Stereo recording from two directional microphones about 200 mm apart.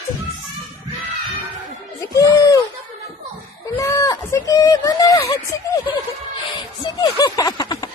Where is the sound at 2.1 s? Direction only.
15° left (ahead or behind).